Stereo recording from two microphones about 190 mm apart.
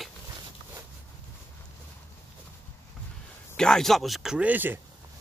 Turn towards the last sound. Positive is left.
turn(degrees=-10)  # may be behind; listen again after turning